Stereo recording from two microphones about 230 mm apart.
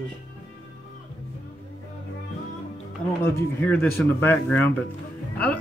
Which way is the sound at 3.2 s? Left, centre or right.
Centre.